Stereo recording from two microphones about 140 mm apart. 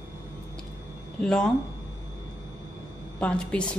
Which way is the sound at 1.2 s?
5° left (ahead or behind).